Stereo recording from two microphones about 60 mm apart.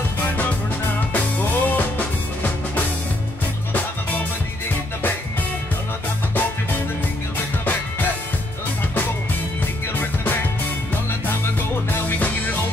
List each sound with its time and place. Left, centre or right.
1.1 s music: left